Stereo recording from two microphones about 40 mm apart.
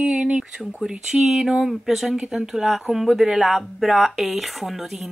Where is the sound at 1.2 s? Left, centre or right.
Centre.